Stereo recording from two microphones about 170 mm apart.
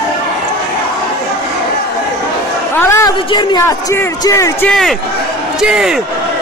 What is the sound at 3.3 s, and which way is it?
A man's voice, 25° left (ahead or behind).